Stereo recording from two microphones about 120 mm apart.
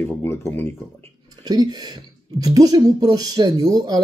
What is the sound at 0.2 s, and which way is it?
Speech, 20° left (ahead or behind).